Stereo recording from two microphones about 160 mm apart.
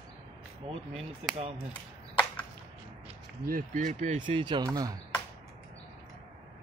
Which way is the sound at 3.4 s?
60° right (ahead or behind).